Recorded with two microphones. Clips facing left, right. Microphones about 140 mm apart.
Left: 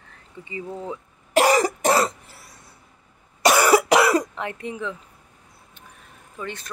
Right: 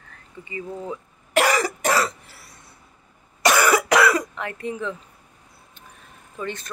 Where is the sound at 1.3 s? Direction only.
35° left (ahead or behind).